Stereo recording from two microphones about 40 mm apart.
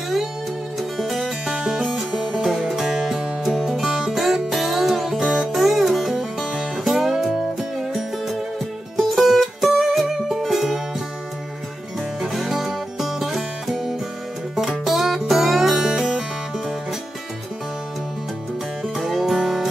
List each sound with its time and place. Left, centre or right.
0.9 s music: centre
2.7 s music: centre
3.4 s music: centre
12.2 s music: centre
14.9 s music: centre
18.9 s music: centre